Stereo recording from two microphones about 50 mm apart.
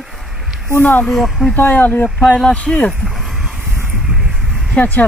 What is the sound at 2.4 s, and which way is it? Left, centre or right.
Speech, left.